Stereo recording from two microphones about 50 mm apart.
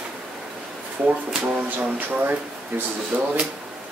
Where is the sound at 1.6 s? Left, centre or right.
Right.